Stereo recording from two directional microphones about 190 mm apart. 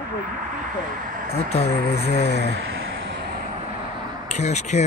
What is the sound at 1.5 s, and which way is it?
Speech, 35° left (ahead or behind).